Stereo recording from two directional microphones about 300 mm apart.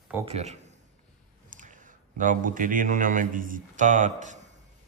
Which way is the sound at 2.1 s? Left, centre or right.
Right.